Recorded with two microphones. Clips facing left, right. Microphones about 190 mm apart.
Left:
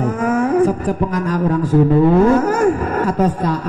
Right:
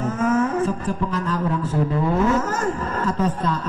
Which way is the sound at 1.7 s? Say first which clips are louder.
Left 12 dB; 35° left (ahead or behind).